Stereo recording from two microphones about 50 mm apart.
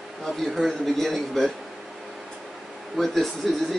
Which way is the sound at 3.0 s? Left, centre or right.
Centre.